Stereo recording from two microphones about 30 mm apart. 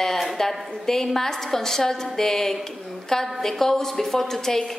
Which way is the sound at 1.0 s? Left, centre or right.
Centre.